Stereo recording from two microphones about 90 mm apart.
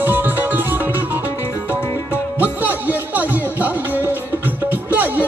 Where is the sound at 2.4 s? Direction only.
20° right (ahead or behind).